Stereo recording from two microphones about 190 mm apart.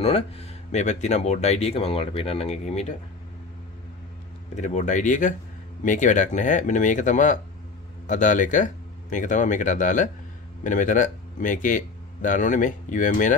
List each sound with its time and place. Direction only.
0.0 s speech: 30° left (ahead or behind)
4.6 s speech: 40° left (ahead or behind)